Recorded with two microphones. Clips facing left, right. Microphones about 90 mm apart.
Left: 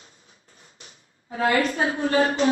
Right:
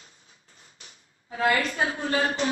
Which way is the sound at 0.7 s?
35° left (ahead or behind).